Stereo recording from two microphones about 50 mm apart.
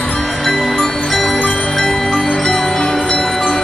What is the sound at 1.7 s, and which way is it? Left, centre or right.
Music, centre.